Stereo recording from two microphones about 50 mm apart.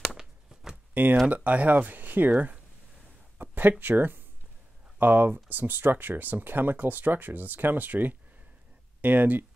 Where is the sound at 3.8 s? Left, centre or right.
Right.